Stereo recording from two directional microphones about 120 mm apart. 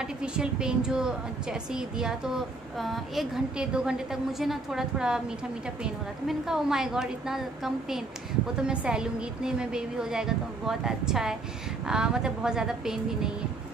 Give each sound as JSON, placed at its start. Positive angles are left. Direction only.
{"t": 0.0, "sound": "a woman's voice", "side_deg": -5}